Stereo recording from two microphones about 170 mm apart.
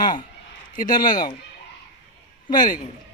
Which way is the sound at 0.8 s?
55° left (ahead or behind).